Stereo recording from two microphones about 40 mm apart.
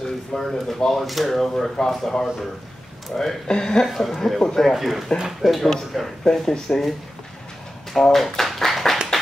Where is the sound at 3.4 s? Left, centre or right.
Centre.